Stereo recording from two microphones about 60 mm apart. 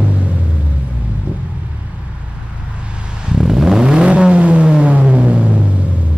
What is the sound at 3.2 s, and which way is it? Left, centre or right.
Vehicle, centre.